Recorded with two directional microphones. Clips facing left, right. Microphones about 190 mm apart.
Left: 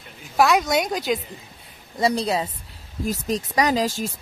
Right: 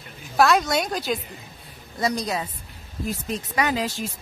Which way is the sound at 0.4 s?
10° left (ahead or behind).